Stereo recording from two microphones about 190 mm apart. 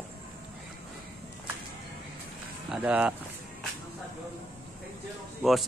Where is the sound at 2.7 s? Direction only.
5° right (ahead or behind).